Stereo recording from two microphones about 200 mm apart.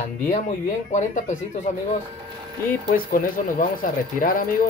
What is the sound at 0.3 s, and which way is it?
Speech, 40° left (ahead or behind).